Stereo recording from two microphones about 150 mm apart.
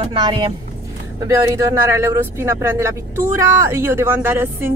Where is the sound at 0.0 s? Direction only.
35° right (ahead or behind).